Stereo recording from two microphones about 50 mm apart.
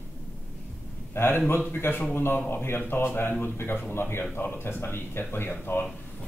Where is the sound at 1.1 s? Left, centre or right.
Left.